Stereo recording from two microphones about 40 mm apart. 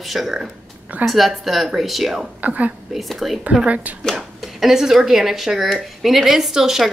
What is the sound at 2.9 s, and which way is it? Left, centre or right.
Speech, centre.